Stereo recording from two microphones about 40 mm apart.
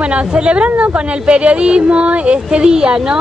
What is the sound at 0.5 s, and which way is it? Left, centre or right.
Speech, right.